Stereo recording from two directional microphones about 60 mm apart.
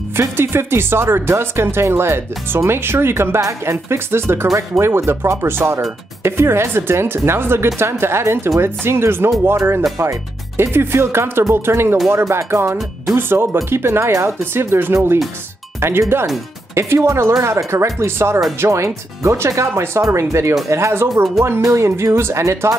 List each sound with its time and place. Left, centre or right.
0.4 s speech: right
3.3 s speech: right
16.7 s speech: right